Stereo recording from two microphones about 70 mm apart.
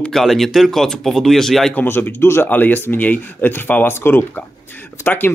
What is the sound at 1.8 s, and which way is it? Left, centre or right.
Speech, left.